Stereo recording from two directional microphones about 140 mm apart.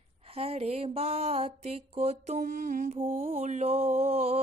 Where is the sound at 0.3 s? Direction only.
45° right (ahead or behind); by 3.0 s 65° right (ahead or behind).